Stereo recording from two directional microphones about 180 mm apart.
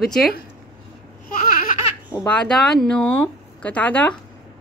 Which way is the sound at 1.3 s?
50° left (ahead or behind).